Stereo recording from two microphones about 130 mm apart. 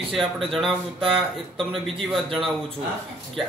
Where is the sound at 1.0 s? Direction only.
45° right (ahead or behind).